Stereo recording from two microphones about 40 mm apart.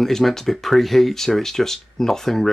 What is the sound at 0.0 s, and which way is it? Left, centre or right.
Speech, centre.